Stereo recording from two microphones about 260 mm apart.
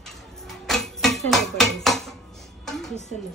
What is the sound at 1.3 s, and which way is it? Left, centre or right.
Speech, centre.